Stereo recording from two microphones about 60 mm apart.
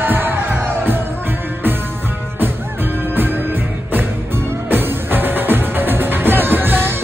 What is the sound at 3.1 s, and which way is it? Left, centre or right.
Music, right.